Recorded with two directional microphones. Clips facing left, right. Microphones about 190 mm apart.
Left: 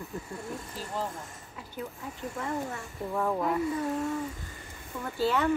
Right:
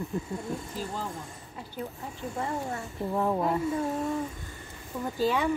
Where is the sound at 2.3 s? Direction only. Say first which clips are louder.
Right 2 dB; 25° right (ahead or behind).